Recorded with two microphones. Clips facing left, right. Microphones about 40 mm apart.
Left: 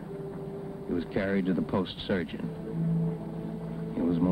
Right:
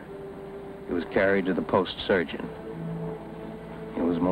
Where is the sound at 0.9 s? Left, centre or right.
Right.